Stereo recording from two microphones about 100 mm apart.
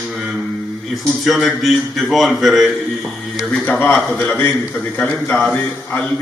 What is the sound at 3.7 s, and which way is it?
A man's voice, 20° left (ahead or behind).